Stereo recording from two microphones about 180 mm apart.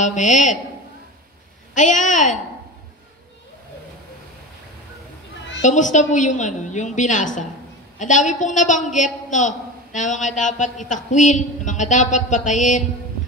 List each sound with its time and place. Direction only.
0.0 s a man's voice: 40° left (ahead or behind)
1.8 s a man's voice: 45° left (ahead or behind)
5.6 s a man's voice: 45° left (ahead or behind)